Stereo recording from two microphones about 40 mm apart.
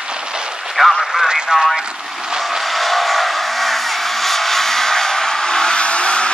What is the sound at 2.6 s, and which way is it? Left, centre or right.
Vehicle, centre.